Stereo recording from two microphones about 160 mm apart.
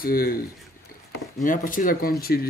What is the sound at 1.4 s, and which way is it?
Speech, 60° left (ahead or behind).